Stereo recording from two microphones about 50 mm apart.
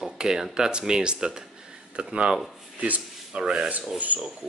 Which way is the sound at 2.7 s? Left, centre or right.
Right.